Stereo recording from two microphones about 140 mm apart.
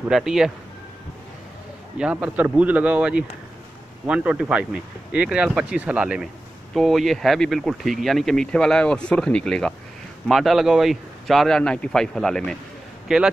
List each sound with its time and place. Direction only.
0.1 s speech: centre (ahead or behind)
2.0 s speech: 10° right (ahead or behind)